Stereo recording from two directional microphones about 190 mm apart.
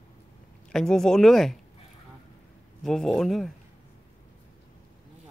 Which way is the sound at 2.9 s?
Centre (ahead or behind).